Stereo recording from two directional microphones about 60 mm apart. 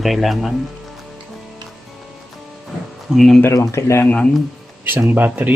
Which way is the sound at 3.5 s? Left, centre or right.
Left.